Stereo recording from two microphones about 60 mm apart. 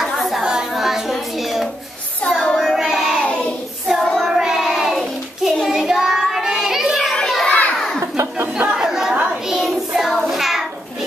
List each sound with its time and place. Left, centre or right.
0.2 s a sound: centre
2.2 s child singing: centre
4.0 s child singing: centre
4.3 s child singing: centre
7.4 s children playing: left
7.7 s a sound: centre
8.7 s chatter: centre
9.1 s a sound: right
9.5 s child singing: centre